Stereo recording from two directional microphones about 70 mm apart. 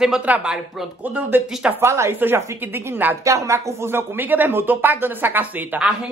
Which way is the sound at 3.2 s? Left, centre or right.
Right.